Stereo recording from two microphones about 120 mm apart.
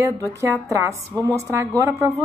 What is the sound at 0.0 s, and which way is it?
A woman's voice, 25° right (ahead or behind).